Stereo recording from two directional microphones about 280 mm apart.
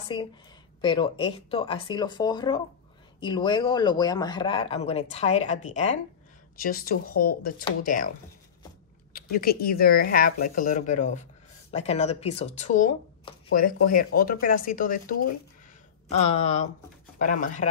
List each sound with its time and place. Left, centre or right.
0.1 s speech: centre
9.1 s speech: left
16.2 s speech: left